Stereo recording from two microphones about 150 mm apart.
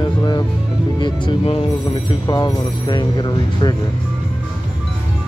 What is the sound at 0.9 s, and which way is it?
Speech, 30° left (ahead or behind).